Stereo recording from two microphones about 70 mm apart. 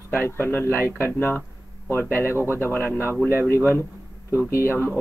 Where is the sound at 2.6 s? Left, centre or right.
Left.